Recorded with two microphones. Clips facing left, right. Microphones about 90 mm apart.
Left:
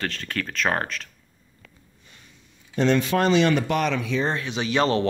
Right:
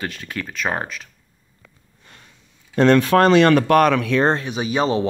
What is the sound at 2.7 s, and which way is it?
Speech, 50° right (ahead or behind).